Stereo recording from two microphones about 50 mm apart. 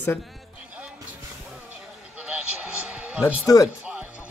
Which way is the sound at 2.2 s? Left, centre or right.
Centre.